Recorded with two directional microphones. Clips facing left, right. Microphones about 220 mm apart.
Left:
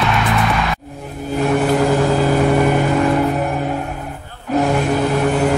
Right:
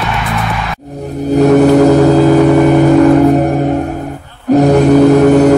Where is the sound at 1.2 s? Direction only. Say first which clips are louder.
Right 10 dB; 40° right (ahead or behind).